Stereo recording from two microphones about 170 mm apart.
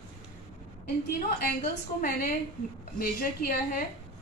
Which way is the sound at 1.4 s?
60° left (ahead or behind).